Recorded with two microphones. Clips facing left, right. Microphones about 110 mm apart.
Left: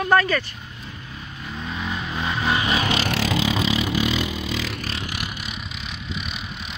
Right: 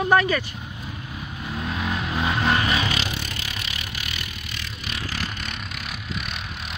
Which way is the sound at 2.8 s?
35° left (ahead or behind).